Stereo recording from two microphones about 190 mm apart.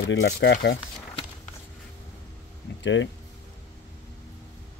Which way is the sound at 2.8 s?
75° left (ahead or behind).